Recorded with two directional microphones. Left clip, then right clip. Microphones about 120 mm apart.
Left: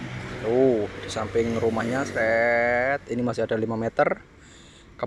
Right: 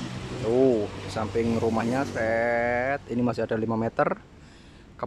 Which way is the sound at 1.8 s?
15° right (ahead or behind).